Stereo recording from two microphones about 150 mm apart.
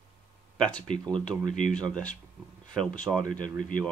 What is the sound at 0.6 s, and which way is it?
Speech, 5° left (ahead or behind).